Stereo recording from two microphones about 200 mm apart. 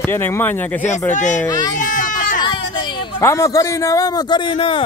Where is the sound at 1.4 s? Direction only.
20° left (ahead or behind).